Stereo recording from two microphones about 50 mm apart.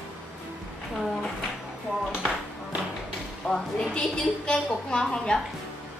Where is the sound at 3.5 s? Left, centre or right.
Centre.